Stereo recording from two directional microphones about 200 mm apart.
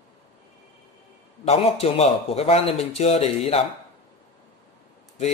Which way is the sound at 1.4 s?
30° left (ahead or behind).